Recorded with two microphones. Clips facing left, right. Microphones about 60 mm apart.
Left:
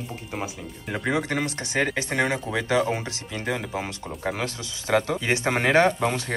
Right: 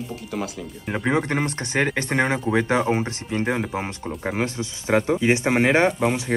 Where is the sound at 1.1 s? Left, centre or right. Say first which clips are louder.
Right 3 dB; right.